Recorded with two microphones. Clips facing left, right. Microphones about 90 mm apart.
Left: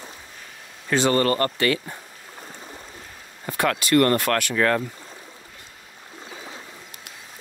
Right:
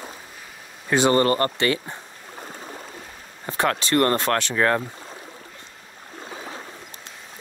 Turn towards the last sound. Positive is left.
turn(degrees=-35)  # may be behind; listen again after turning